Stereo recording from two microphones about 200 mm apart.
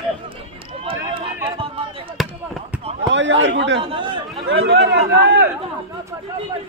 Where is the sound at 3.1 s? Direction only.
65° right (ahead or behind).